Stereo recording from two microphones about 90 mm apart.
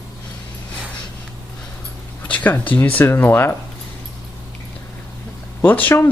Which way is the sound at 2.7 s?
15° left (ahead or behind).